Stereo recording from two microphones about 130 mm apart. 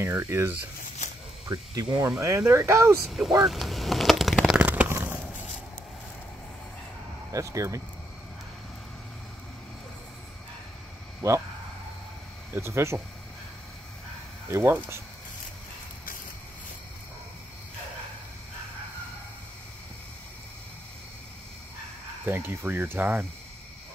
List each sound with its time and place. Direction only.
0.0 s speech: 20° right (ahead or behind)
1.5 s speech: 30° right (ahead or behind)
3.1 s speech: centre (ahead or behind)
3.4 s a sound: centre (ahead or behind); by 5.1 s 15° right (ahead or behind)
7.3 s speech: 25° right (ahead or behind)
12.5 s speech: 20° right (ahead or behind)
14.5 s speech: 20° right (ahead or behind)
22.2 s speech: 15° right (ahead or behind)